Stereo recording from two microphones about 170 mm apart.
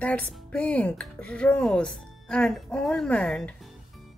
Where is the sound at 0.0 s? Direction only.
10° left (ahead or behind).